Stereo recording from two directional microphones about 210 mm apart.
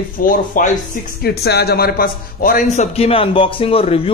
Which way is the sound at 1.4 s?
50° left (ahead or behind).